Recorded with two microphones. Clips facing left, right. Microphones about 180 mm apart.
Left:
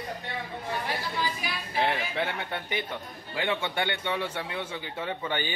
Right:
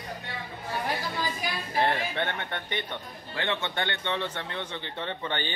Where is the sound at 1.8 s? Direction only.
Centre (ahead or behind).